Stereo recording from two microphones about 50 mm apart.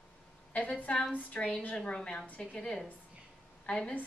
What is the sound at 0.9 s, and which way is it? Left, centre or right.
A woman's voice, centre.